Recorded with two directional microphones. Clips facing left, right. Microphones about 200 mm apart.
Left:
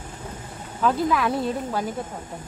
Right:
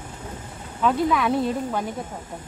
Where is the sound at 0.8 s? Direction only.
Centre (ahead or behind).